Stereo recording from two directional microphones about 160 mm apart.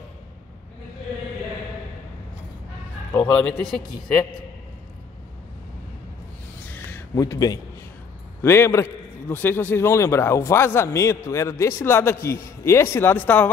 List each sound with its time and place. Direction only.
3.2 s speech: 5° left (ahead or behind)
7.2 s a man's voice: 25° left (ahead or behind)